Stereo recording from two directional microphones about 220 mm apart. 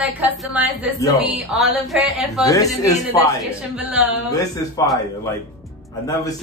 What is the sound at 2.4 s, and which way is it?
Speech, 15° left (ahead or behind).